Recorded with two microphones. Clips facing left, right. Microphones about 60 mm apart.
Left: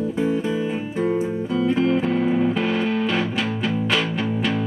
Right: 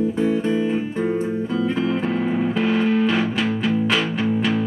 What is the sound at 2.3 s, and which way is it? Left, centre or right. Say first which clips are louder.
Music: even; centre.